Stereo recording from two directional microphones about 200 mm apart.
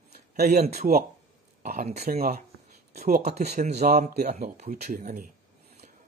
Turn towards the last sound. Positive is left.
turn(degrees=-40)  # may be behind; listen again after turning